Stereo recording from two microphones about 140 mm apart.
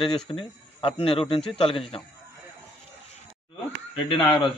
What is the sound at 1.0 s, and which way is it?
Speech, 40° left (ahead or behind).